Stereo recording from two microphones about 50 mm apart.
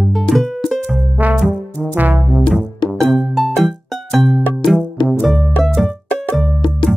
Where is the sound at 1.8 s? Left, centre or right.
Right.